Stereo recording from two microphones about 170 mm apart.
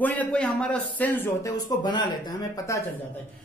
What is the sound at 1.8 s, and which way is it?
A man's voice, 25° left (ahead or behind).